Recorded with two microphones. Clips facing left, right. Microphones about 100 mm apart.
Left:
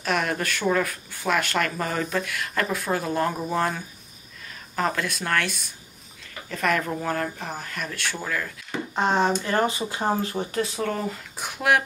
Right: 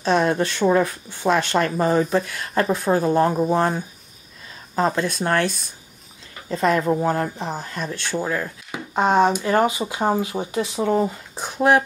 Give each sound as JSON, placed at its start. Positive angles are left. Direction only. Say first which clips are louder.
{"t": 0.0, "sound": "speech", "louder": "right 7 dB", "side_deg": -30}
{"t": 8.7, "sound": "speech", "louder": "right 5 dB", "side_deg": -10}
{"t": 11.3, "sound": "speech", "louder": "right 5 dB", "side_deg": -30}